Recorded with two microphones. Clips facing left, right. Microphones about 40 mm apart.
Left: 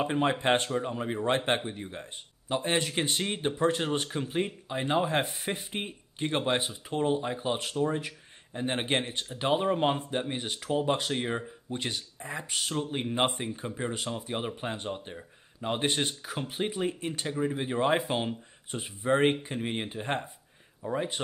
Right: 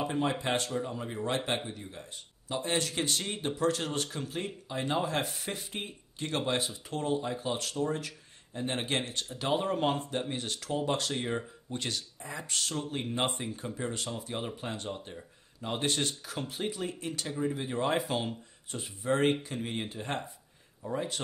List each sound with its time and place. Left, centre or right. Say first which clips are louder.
0.0 s speech: left 4 dB; left